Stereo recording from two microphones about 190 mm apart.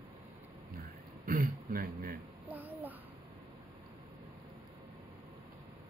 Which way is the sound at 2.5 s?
10° right (ahead or behind).